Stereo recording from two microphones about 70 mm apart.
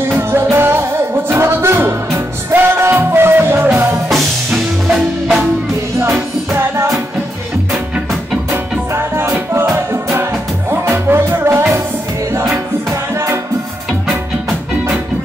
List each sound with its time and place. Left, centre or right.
0.3 s music: right
4.1 s music: centre
5.9 s music: right
8.9 s music: right
13.1 s music: right